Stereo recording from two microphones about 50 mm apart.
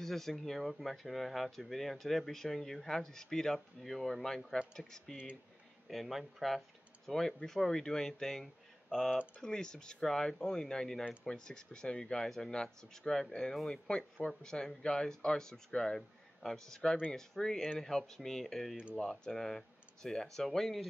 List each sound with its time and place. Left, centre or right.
0.0 s speech: centre
5.1 s speech: right
5.9 s speech: centre